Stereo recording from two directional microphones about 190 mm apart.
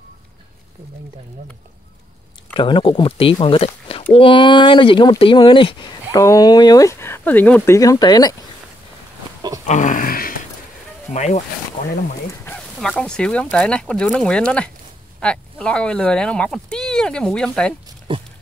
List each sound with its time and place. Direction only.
2.5 s speech: 25° left (ahead or behind)
9.7 s a sound: 40° left (ahead or behind)
11.1 s speech: 40° left (ahead or behind)
12.4 s speech: 5° left (ahead or behind)